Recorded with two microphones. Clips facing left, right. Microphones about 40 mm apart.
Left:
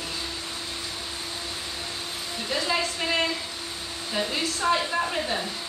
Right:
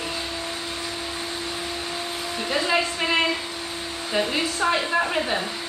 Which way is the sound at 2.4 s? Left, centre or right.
Right.